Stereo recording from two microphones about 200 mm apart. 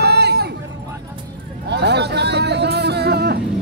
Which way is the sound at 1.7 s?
55° right (ahead or behind).